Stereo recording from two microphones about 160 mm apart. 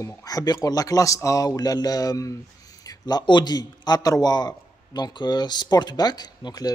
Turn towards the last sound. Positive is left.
turn(degrees=25)  # may be behind; listen again after turning